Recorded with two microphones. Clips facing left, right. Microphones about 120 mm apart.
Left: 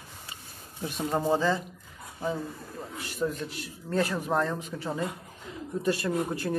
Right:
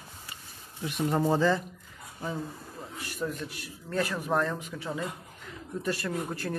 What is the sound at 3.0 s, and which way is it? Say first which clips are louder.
Speech: left 3 dB; 30° left (ahead or behind).